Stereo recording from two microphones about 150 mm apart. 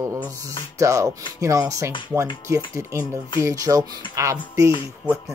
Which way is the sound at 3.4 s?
20° right (ahead or behind).